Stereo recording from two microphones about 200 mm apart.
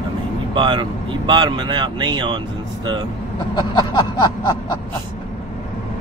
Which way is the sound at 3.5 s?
25° left (ahead or behind).